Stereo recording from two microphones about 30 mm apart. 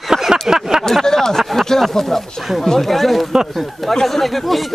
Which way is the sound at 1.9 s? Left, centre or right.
Centre.